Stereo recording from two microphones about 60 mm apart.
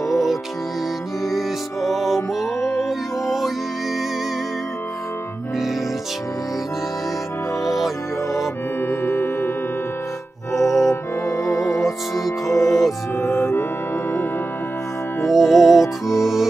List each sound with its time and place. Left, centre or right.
0.1 s music: centre
7.6 s music: centre
8.8 s music: left
10.5 s music: left
12.6 s music: centre
13.2 s music: left
15.2 s music: centre